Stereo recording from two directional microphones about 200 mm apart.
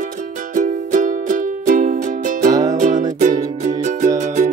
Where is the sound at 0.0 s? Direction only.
40° right (ahead or behind).